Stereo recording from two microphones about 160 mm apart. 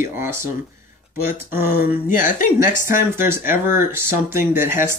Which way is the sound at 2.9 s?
15° right (ahead or behind).